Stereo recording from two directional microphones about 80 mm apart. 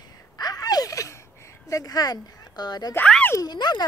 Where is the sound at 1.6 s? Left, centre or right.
Left.